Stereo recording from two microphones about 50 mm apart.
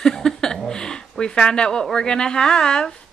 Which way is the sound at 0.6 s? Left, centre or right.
Centre.